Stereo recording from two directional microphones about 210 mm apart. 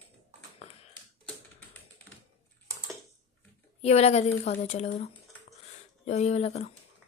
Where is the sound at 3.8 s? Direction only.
30° left (ahead or behind).